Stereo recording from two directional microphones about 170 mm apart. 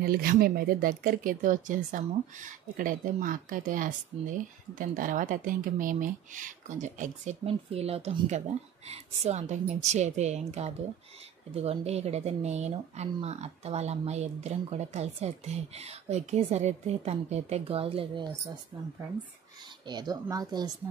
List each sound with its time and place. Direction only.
0.0 s speech: 60° right (ahead or behind); by 18.2 s 35° right (ahead or behind)
19.9 s speech: 25° right (ahead or behind)